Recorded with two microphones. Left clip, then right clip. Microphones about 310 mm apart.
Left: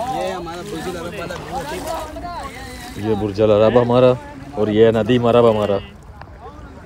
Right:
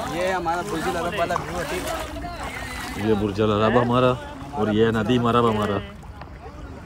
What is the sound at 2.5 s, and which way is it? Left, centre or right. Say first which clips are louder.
Splash: right 2 dB; centre.